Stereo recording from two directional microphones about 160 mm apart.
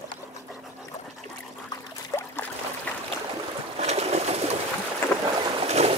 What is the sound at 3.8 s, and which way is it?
Bird, 40° right (ahead or behind).